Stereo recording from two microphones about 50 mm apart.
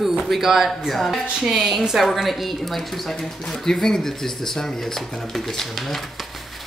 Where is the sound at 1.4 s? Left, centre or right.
Centre.